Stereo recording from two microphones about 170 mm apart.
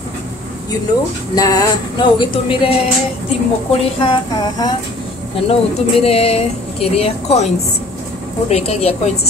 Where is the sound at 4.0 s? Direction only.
25° left (ahead or behind).